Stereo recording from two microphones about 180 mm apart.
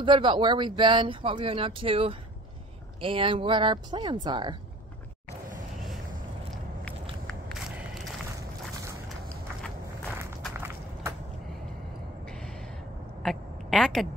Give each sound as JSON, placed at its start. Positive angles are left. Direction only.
{"t": 0.0, "sound": "speech", "side_deg": -25}
{"t": 7.2, "sound": "walk", "side_deg": 0}
{"t": 10.6, "sound": "walk", "side_deg": -15}
{"t": 13.2, "sound": "a sound", "side_deg": 0}